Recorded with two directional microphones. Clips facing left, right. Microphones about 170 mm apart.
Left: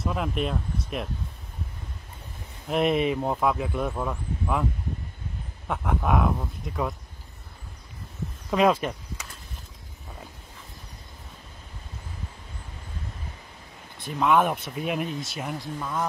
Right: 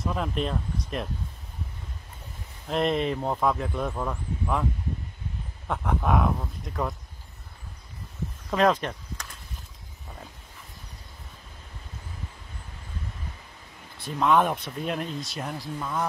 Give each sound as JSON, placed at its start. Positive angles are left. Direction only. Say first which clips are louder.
{"t": 0.0, "sound": "speech", "louder": "left 1 dB", "side_deg": 5}
{"t": 2.7, "sound": "speech", "louder": "left 2 dB", "side_deg": 5}
{"t": 5.7, "sound": "speech", "louder": "even", "side_deg": 0}
{"t": 8.5, "sound": "a sound", "louder": "left 1 dB", "side_deg": 5}
{"t": 14.0, "sound": "speech", "louder": "even", "side_deg": 5}